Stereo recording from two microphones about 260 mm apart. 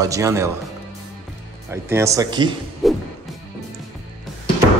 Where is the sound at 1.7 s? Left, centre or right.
Centre.